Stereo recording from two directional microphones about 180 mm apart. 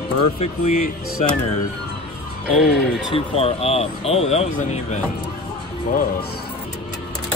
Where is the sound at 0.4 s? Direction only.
40° left (ahead or behind).